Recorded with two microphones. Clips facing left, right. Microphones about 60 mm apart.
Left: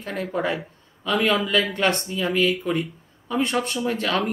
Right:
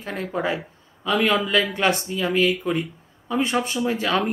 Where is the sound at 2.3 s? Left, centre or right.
Centre.